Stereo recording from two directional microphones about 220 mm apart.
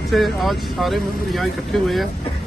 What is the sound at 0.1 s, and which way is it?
Speech, centre (ahead or behind).